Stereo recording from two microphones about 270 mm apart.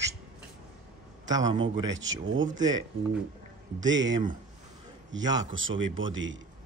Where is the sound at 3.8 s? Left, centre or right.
Right.